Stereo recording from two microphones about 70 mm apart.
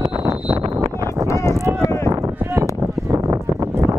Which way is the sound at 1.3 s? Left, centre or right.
Left.